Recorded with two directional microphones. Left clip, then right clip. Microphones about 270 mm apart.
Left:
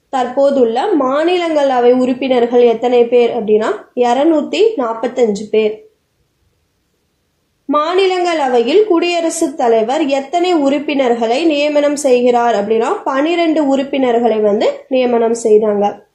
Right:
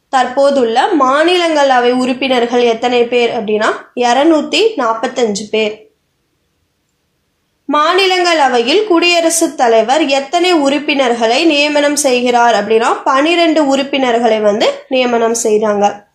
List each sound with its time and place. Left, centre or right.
0.1 s a woman's voice: right
7.7 s a woman's voice: right